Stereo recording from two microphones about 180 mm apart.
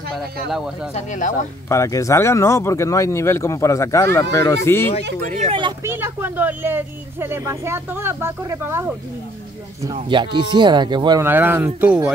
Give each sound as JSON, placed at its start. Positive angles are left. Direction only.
{"t": 0.9, "sound": "speech", "side_deg": 45}
{"t": 1.7, "sound": "speech", "side_deg": 15}
{"t": 5.5, "sound": "speech", "side_deg": -25}
{"t": 5.9, "sound": "speech", "side_deg": -15}
{"t": 9.9, "sound": "speech", "side_deg": -25}
{"t": 11.2, "sound": "speech", "side_deg": -10}